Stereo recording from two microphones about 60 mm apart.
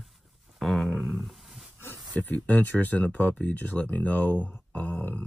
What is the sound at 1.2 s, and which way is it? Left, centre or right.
Roaring cats, centre.